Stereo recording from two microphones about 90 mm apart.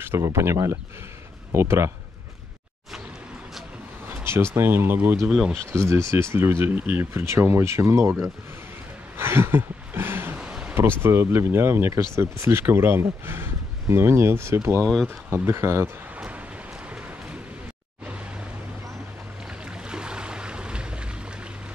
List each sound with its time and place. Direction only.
0.2 s speech: 30° right (ahead or behind)
4.2 s a sound: 30° right (ahead or behind)
4.6 s speech: 25° right (ahead or behind)
5.3 s speech: 5° right (ahead or behind)
5.7 s speech: 30° right (ahead or behind)
9.1 s a sound: 25° right (ahead or behind)
10.4 s a sound: 10° right (ahead or behind)
11.0 s speech: 25° right (ahead or behind)
19.9 s boat: 10° right (ahead or behind)